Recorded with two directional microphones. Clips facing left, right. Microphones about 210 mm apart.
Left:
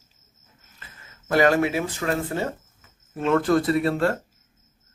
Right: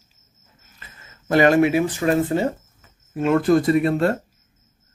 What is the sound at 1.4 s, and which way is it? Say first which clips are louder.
Speech: right 5 dB; 20° right (ahead or behind).